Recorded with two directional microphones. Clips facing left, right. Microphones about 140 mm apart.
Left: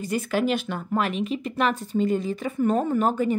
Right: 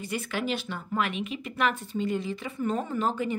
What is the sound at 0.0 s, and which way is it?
A woman's voice, 40° left (ahead or behind).